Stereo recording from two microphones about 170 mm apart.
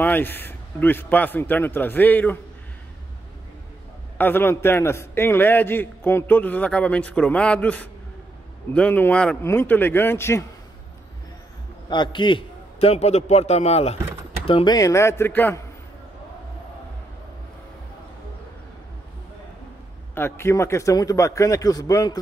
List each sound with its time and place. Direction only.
0.0 s a man's voice: 10° left (ahead or behind)
4.2 s a man's voice: 10° left (ahead or behind)
11.9 s a man's voice: 25° left (ahead or behind); by 15.6 s 10° left (ahead or behind)
20.2 s a man's voice: 15° left (ahead or behind)